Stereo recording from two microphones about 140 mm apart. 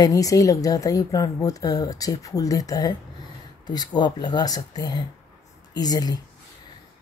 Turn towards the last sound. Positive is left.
turn(degrees=30)  # may be behind; listen again after turning